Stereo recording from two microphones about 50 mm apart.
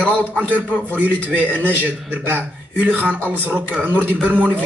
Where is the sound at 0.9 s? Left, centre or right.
Right.